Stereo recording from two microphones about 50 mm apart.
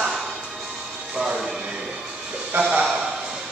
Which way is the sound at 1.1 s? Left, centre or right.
Centre.